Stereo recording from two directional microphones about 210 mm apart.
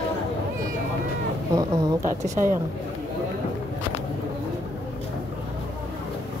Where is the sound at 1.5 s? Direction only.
15° right (ahead or behind).